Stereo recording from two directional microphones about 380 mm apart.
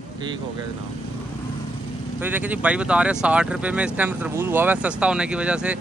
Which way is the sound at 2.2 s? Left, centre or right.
Centre.